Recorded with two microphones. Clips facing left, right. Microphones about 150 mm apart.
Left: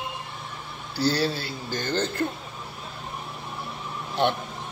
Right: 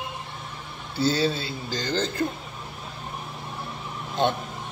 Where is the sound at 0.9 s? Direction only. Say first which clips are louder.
Right 1 dB; 20° right (ahead or behind).